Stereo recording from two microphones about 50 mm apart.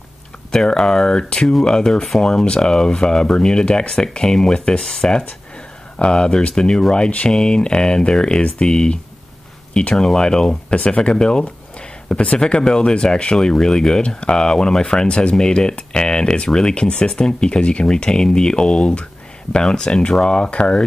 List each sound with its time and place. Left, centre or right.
0.5 s speech: centre